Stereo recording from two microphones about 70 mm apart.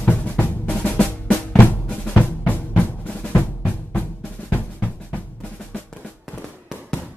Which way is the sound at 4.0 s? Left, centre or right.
Left.